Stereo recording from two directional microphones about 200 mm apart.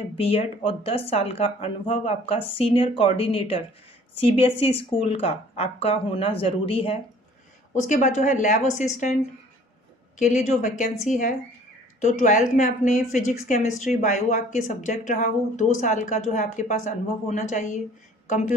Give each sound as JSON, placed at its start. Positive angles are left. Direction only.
{"t": 0.2, "sound": "a woman's voice", "side_deg": 30}
{"t": 10.1, "sound": "a woman's voice", "side_deg": 35}